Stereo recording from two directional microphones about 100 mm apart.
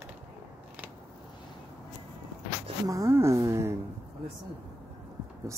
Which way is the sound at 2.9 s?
30° right (ahead or behind).